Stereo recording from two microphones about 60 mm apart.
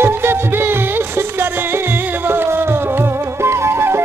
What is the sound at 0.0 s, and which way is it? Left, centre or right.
Music, right.